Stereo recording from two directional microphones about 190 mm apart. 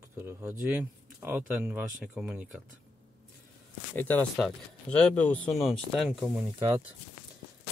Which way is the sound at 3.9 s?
10° left (ahead or behind).